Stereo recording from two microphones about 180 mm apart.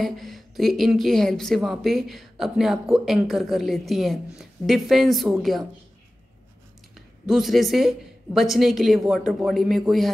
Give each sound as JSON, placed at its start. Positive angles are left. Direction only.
{"t": 0.0, "sound": "speech", "side_deg": 0}
{"t": 7.2, "sound": "speech", "side_deg": 0}